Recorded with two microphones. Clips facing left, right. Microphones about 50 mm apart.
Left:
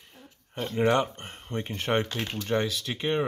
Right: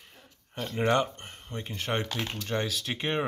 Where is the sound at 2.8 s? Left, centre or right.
Centre.